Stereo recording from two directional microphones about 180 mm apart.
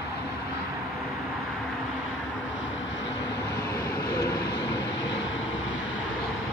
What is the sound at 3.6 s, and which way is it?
Vehicle, 15° left (ahead or behind).